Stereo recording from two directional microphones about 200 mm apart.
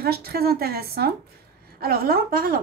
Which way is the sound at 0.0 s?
50° right (ahead or behind).